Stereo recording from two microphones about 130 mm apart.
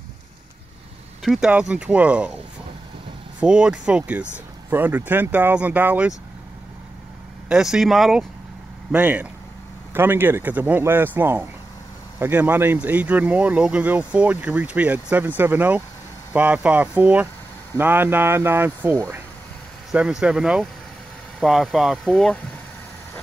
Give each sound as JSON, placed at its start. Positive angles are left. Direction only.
{"t": 1.2, "sound": "speech", "side_deg": -5}
{"t": 3.3, "sound": "speech", "side_deg": -10}
{"t": 7.4, "sound": "speech", "side_deg": -5}
{"t": 8.9, "sound": "speech", "side_deg": -10}
{"t": 19.9, "sound": "speech", "side_deg": -5}